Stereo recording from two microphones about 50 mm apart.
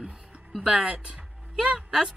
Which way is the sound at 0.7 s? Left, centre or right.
Centre.